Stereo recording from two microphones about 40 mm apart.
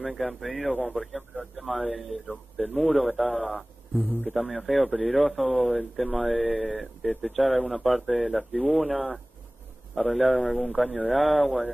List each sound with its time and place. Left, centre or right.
0.0 s speech: centre
4.0 s a man's voice: left
4.3 s speech: centre